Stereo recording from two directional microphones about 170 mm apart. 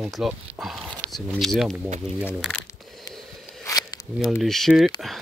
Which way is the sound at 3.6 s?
20° left (ahead or behind).